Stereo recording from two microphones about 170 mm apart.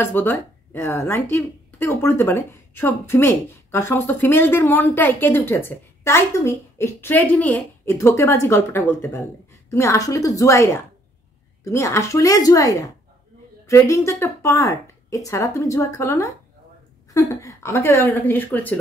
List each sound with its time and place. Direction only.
0.0 s a woman's voice: 10° left (ahead or behind)